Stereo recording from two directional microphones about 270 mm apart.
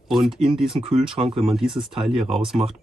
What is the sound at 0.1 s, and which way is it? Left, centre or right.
Speech, centre.